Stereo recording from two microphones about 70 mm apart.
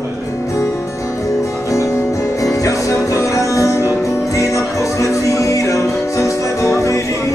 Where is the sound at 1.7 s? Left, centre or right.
Left.